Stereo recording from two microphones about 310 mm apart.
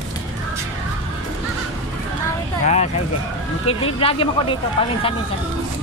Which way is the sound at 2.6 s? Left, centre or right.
Left.